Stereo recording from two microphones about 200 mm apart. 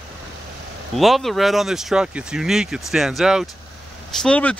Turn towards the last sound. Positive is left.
turn(degrees=5)  # may be behind; listen again after turning